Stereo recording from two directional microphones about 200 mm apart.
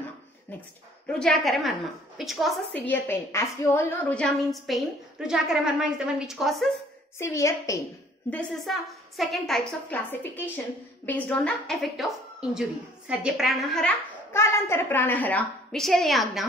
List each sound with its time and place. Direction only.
1.0 s a woman's voice: centre (ahead or behind)
2.9 s a woman's voice: 10° left (ahead or behind)
7.2 s a woman's voice: 15° left (ahead or behind)
8.3 s a woman's voice: 5° left (ahead or behind)